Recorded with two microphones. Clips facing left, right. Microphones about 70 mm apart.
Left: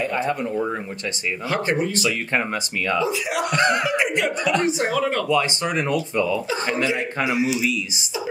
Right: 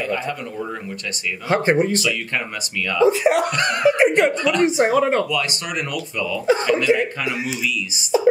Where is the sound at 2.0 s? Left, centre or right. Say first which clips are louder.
Left 1 dB; left.